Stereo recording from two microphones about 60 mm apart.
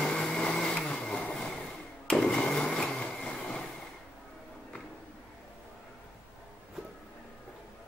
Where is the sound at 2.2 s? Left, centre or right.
Centre.